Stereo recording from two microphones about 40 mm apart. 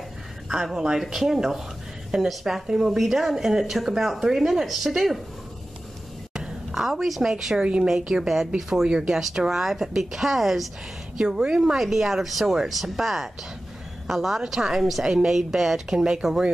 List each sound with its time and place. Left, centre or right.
0.5 s a woman's voice: centre
6.7 s a woman's voice: centre
7.5 s speech: right
8.1 s speech: centre
8.8 s speech: right; by 10.7 s centre
11.1 s a woman's voice: centre